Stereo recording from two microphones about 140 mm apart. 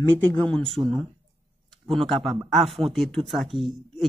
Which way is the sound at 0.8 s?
20° right (ahead or behind).